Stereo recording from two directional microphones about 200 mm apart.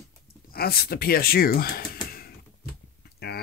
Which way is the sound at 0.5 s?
50° left (ahead or behind).